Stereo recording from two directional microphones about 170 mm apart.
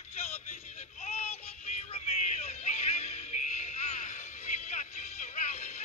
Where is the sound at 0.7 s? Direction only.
40° left (ahead or behind).